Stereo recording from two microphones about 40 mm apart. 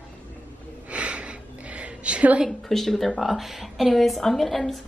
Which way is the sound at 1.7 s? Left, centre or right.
Right.